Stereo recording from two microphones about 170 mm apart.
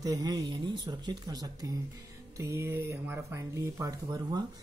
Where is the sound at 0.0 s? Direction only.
20° right (ahead or behind).